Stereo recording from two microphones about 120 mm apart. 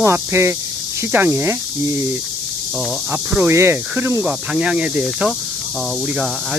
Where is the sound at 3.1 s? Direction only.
15° right (ahead or behind).